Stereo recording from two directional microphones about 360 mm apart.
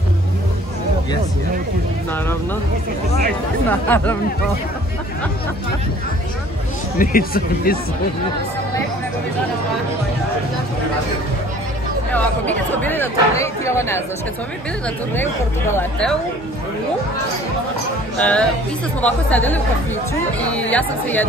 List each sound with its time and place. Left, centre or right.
3.6 s speech: centre
7.0 s speech: left
12.1 s speech: centre
15.7 s speech: centre
18.2 s speech: centre